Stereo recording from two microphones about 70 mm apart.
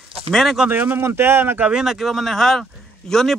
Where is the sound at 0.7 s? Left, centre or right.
Right.